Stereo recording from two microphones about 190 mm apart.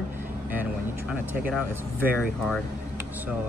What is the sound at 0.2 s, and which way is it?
Vehicle, 10° right (ahead or behind).